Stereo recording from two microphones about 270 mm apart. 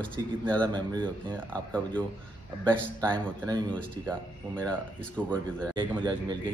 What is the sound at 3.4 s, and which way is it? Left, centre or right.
Speech, centre.